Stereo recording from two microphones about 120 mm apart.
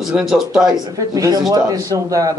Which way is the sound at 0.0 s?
Centre (ahead or behind).